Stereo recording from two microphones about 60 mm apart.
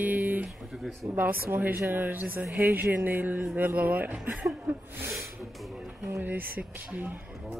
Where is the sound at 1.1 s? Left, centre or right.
Right.